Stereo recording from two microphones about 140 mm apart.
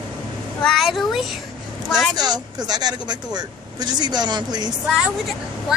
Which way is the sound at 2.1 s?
30° right (ahead or behind).